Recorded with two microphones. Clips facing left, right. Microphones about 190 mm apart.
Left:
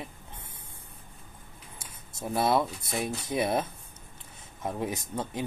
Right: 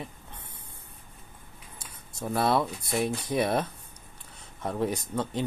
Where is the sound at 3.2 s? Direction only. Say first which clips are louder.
Left 1 dB; 20° left (ahead or behind).